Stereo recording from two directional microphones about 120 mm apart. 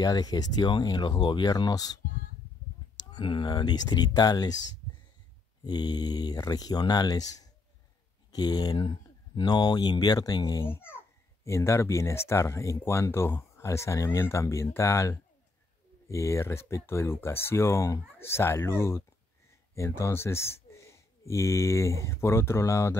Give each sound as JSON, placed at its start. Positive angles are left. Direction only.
{"t": 0.0, "sound": "speech", "side_deg": 35}
{"t": 3.0, "sound": "speech", "side_deg": 35}
{"t": 5.6, "sound": "speech", "side_deg": 35}
{"t": 10.6, "sound": "a child's voice", "side_deg": 20}